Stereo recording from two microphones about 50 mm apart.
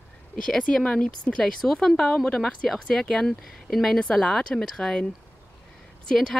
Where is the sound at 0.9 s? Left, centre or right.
Left.